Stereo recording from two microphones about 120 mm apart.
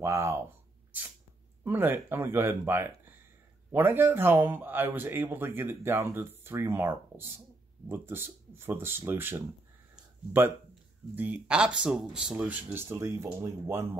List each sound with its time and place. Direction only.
0.0 s speech: 25° right (ahead or behind)
1.6 s speech: 20° right (ahead or behind)
11.1 s speech: 10° right (ahead or behind)